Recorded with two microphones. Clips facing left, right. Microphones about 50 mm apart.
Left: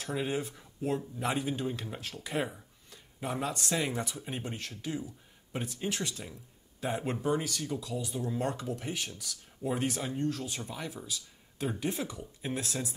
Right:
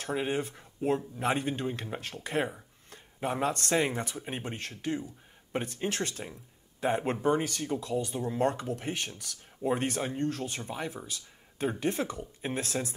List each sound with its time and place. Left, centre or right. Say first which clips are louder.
0.1 s speech: right 2 dB; right
2.9 s a sound: right 4 dB; right
3.7 s speech: right 4 dB; right
6.8 s speech: right 5 dB; right
9.6 s speech: right 3 dB; right
9.8 s speech: right 1 dB; right
11.1 s a sound: left 1 dB; right
11.8 s speech: right 4 dB; right